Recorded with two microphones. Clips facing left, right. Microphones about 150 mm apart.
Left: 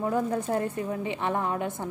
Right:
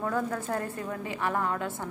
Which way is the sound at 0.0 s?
20° left (ahead or behind).